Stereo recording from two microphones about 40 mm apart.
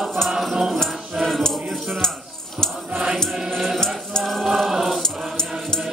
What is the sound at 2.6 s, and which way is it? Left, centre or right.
Choir, centre.